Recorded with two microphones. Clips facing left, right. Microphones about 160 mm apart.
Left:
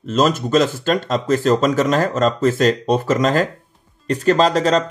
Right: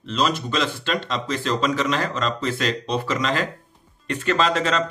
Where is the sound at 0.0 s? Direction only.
45° left (ahead or behind).